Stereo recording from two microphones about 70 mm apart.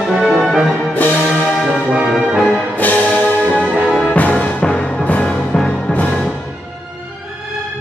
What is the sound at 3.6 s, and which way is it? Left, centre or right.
Music, centre.